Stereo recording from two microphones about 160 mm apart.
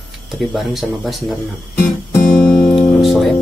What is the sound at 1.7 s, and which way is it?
Music, 10° left (ahead or behind).